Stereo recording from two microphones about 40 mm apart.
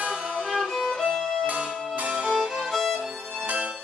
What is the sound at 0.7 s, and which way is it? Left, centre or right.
Violin, centre.